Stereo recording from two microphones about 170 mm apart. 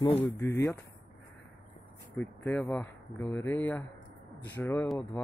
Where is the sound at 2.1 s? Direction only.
10° left (ahead or behind).